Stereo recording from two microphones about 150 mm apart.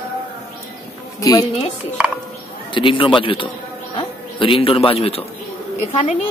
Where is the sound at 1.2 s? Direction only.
25° left (ahead or behind).